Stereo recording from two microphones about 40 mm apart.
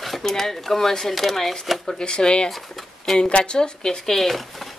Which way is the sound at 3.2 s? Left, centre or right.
Left.